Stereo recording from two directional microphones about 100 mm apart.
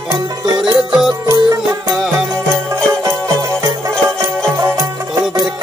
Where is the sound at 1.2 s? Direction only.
35° right (ahead or behind).